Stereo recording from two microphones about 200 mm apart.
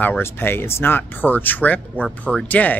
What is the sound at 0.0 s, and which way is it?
A man's voice, 10° left (ahead or behind).